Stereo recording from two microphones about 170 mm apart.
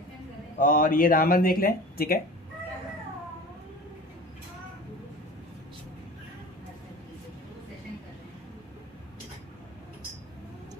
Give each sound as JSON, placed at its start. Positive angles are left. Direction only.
{"t": 0.6, "sound": "speech", "side_deg": 55}